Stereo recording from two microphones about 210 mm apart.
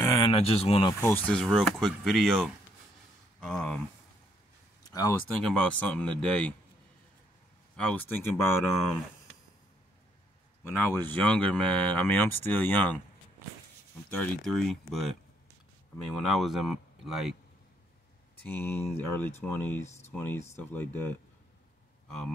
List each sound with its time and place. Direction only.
0.0 s a sound: 15° left (ahead or behind)
0.3 s speech: 30° left (ahead or behind)
1.0 s speech: 10° left (ahead or behind)
4.8 s a sound: 15° left (ahead or behind)
5.4 s speech: 5° left (ahead or behind)
7.7 s speech: 5° left (ahead or behind)
10.7 s speech: 10° left (ahead or behind)
14.1 s speech: 5° left (ahead or behind)
16.2 s speech: centre (ahead or behind)
18.5 s speech: 10° left (ahead or behind)
22.0 s a sound: 5° left (ahead or behind)